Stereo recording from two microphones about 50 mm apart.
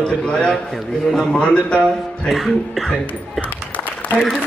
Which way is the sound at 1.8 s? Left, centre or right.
Centre.